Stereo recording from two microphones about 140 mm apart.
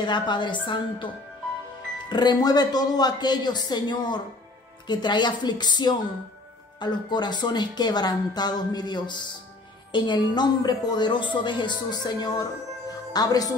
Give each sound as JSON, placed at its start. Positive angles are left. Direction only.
{"t": 0.0, "sound": "a woman's voice", "side_deg": 35}